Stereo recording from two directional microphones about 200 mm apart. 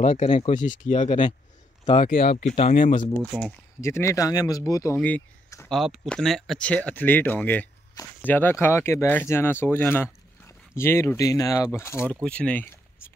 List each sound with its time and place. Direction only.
0.0 s speech: 35° left (ahead or behind)
3.2 s speech: 5° left (ahead or behind)
3.8 s speech: 15° left (ahead or behind)